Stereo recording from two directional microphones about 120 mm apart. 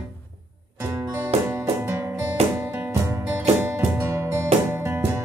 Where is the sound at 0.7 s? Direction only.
20° right (ahead or behind).